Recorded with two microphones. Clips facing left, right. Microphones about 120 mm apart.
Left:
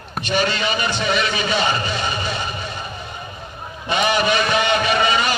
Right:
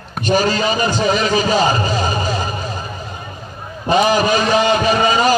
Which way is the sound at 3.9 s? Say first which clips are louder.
Right 5 dB; 35° right (ahead or behind).